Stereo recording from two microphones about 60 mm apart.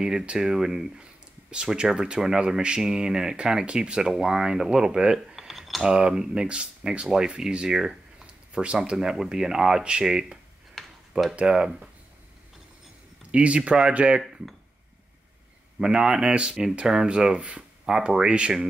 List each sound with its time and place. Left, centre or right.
0.0 s speech: centre
10.7 s a sound: centre
11.3 s speech: centre
13.3 s speech: centre
15.8 s speech: centre